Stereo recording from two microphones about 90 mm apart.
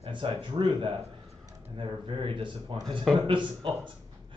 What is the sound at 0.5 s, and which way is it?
Speech, 55° right (ahead or behind).